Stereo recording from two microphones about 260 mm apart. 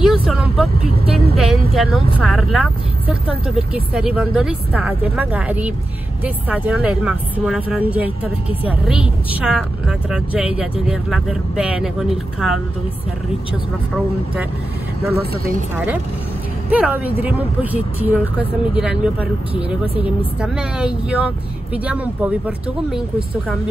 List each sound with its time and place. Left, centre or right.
0.0 s vehicle: centre
1.3 s a sound: centre
1.8 s speech: centre
15.7 s speech: centre